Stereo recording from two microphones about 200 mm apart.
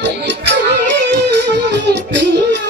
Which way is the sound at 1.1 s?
60° right (ahead or behind).